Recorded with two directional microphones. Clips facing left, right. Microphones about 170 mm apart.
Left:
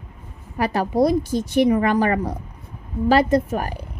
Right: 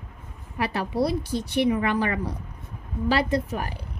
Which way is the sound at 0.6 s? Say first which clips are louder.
Left 6 dB; 40° left (ahead or behind).